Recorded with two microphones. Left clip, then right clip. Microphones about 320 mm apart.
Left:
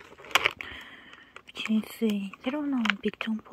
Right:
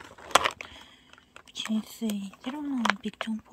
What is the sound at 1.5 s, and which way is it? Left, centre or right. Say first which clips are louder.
Speech: left 2 dB; right.